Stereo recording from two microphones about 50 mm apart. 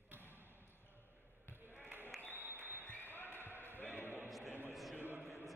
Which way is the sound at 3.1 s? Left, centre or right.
Left.